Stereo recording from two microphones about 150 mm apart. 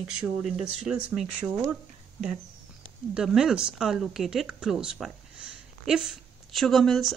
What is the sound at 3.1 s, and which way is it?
Speech, 5° right (ahead or behind).